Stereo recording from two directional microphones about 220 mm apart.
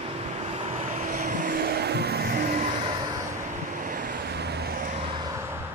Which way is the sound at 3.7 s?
40° right (ahead or behind).